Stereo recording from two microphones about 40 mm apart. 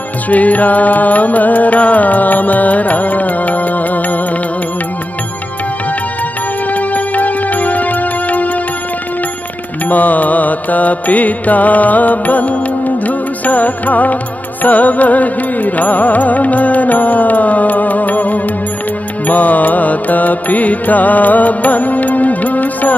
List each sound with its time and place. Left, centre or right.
0.3 s music: left
6.7 s music: left
9.8 s music: left